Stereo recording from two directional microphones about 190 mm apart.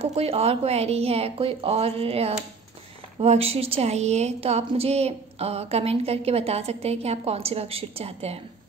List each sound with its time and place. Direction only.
0.0 s a woman's voice: 35° right (ahead or behind)